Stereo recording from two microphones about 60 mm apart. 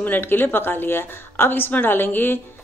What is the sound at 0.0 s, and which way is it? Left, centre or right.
Speech, left.